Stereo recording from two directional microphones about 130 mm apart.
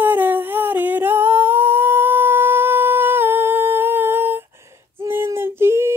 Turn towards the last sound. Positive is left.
turn(degrees=-20)  # may be behind; listen again after turning